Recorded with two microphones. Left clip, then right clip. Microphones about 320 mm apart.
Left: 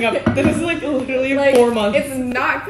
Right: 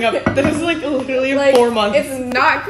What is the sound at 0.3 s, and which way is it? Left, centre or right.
A woman's voice, centre.